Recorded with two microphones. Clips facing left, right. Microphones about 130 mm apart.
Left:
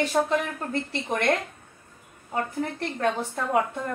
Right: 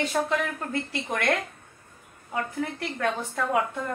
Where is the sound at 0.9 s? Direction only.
25° left (ahead or behind).